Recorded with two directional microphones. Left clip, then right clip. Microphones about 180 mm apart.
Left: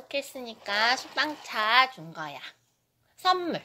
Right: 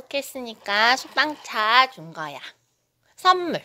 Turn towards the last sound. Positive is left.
turn(degrees=-45)  # may be behind; listen again after turning